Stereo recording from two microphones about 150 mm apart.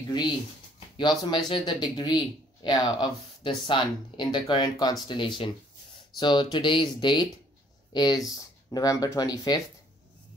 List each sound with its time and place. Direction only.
0.7 s speech: 30° left (ahead or behind)